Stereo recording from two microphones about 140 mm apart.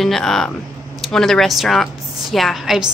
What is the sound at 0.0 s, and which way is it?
A woman's voice, centre (ahead or behind).